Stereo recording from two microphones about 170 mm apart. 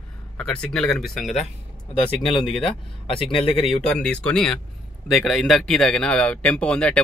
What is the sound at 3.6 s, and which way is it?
Speech, 5° left (ahead or behind).